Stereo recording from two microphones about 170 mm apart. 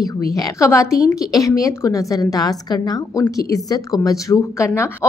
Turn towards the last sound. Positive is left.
turn(degrees=20)  # may be behind; listen again after turning